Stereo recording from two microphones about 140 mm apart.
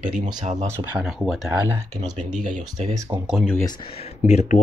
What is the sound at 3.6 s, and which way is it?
Speech, 35° left (ahead or behind).